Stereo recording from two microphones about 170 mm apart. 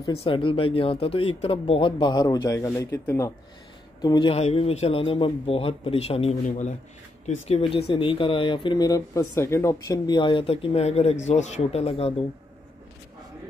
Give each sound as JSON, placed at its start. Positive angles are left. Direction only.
{"t": 0.2, "sound": "a man's voice", "side_deg": 30}
{"t": 4.0, "sound": "speech", "side_deg": 25}